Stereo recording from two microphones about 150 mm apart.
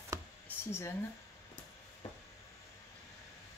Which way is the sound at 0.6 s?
15° left (ahead or behind).